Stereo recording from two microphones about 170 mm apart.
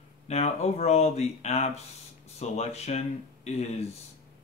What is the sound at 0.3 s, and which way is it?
Speech, 40° left (ahead or behind).